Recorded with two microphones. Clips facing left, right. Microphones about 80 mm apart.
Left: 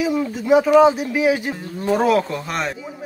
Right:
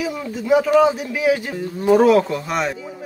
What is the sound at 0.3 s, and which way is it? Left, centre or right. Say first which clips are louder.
Speech: left 1 dB; left.